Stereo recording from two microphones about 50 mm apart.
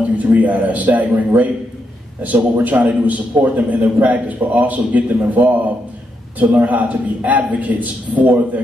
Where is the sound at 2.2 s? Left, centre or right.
Right.